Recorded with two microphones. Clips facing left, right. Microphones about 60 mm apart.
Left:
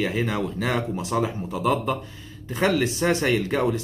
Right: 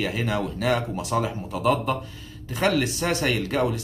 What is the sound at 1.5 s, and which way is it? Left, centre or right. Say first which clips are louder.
Speech: right 1 dB; right.